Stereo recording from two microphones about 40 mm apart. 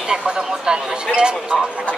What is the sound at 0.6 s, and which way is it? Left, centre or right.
A man's voice, right.